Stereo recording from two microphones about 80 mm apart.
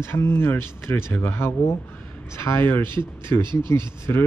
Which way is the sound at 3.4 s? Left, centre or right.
Right.